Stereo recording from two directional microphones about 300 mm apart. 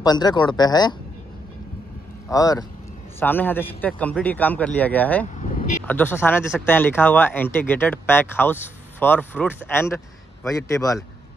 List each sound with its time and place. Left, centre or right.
0.0 s speech: centre
2.2 s a man's voice: centre
5.4 s vehicle: left
5.9 s speech: centre